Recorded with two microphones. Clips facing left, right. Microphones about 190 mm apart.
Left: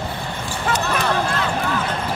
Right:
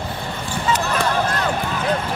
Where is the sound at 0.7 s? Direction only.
60° left (ahead or behind).